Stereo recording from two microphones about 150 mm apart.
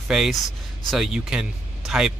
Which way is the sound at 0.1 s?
Centre (ahead or behind).